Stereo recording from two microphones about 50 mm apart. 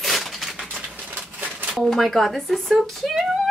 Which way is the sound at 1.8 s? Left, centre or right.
Centre.